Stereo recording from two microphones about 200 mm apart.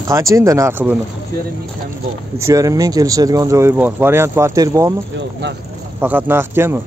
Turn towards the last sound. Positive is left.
turn(degrees=-10)  # may be behind; listen again after turning